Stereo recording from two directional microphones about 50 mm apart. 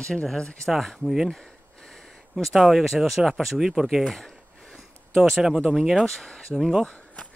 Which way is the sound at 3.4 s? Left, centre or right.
Centre.